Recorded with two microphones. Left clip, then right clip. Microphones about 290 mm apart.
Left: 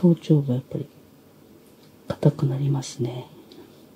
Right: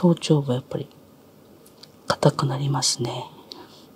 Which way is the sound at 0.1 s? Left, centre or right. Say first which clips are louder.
Right 1 dB; right.